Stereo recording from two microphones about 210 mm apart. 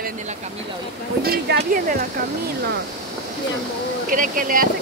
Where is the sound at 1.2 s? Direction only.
45° right (ahead or behind).